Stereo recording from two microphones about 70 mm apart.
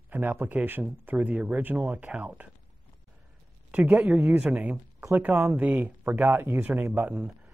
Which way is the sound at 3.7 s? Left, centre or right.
Centre.